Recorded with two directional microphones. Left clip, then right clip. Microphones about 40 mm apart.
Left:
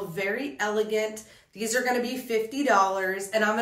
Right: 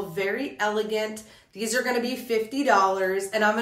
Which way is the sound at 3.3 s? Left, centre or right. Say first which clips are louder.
Right 1 dB; right.